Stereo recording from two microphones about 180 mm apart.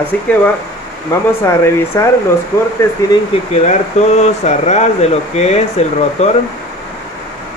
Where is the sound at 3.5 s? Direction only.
40° left (ahead or behind).